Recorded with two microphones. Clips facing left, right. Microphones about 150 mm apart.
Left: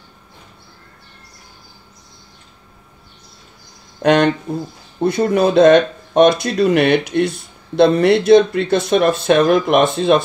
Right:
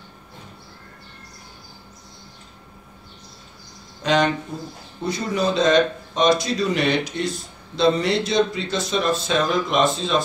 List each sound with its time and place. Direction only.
4.0 s speech: 60° left (ahead or behind)